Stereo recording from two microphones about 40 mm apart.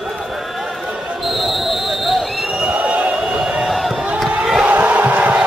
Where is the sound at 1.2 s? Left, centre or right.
Centre.